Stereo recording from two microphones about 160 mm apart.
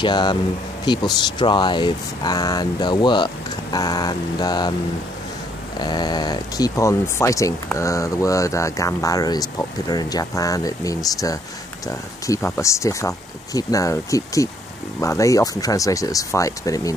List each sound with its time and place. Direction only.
0.0 s speech: 30° left (ahead or behind)
5.8 s speech: 25° left (ahead or behind)